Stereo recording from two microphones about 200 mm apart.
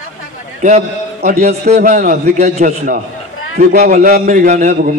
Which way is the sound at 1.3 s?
35° right (ahead or behind).